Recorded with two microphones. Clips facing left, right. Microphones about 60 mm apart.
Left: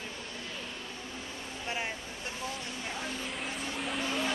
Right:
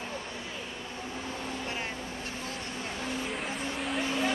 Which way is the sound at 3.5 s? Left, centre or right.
Centre.